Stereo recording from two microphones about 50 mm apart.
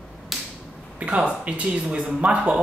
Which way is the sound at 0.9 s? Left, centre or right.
Right.